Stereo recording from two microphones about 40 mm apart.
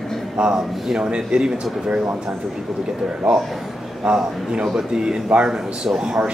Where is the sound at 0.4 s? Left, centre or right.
Centre.